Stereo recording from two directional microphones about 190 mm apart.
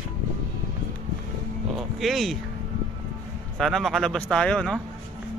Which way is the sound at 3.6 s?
Centre (ahead or behind).